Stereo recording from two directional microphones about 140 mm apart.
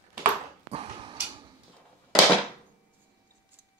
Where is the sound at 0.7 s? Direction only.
40° right (ahead or behind).